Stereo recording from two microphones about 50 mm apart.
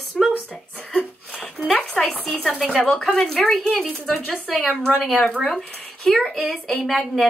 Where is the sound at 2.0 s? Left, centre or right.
Centre.